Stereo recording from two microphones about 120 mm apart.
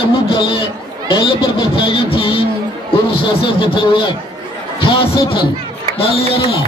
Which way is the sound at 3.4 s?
45° left (ahead or behind).